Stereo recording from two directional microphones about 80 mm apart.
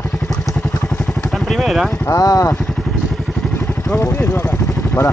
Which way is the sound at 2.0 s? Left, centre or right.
Left.